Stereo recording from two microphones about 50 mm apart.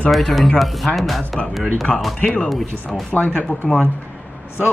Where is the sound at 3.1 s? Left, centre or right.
Centre.